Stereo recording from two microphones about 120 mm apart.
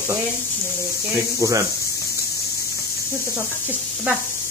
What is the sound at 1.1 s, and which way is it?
Speech, 25° right (ahead or behind).